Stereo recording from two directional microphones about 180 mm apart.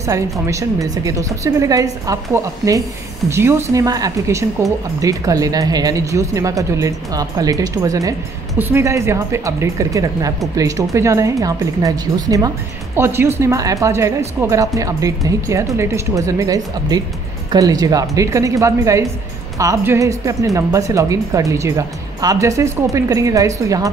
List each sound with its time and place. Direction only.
0.0 s speech: 15° right (ahead or behind)